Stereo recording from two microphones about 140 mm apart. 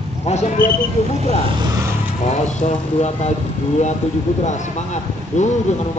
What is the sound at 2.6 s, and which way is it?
Speech, 55° left (ahead or behind).